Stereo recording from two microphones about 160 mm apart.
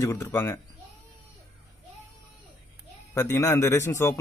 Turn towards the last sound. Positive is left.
turn(degrees=20)  # may be behind; listen again after turning